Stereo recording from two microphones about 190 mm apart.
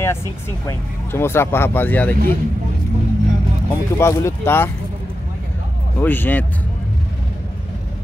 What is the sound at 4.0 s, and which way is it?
Speech, 15° left (ahead or behind).